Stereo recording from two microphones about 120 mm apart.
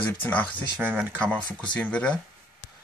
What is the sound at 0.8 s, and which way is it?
Speech, 15° right (ahead or behind).